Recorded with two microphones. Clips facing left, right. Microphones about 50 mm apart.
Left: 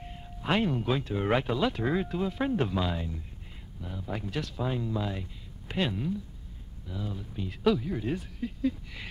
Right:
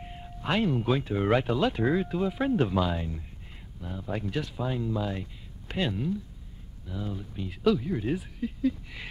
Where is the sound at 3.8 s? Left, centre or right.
Centre.